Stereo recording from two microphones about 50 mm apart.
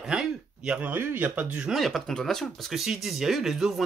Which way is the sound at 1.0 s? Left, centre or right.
Right.